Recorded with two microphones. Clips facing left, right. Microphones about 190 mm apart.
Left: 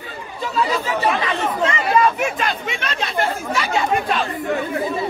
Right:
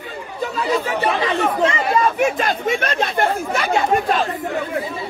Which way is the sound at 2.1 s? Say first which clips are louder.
Right 4 dB; 50° right (ahead or behind).